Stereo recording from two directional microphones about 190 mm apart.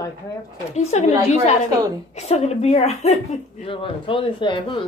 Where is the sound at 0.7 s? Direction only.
35° left (ahead or behind).